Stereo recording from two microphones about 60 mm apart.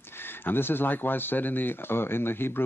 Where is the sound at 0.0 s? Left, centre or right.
Left.